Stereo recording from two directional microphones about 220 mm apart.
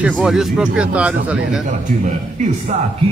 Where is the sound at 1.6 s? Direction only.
35° right (ahead or behind).